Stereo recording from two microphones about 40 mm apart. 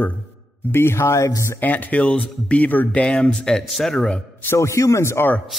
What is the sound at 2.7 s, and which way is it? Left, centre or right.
Speech, left.